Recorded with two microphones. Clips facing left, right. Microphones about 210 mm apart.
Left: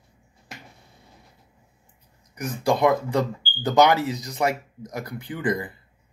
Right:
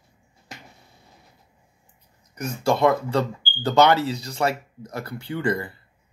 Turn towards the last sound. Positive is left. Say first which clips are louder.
# right 1 dB
turn(degrees=15)  # may be behind; listen again after turning